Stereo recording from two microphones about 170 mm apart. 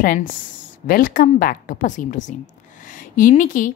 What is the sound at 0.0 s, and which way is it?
A woman's voice, 55° left (ahead or behind).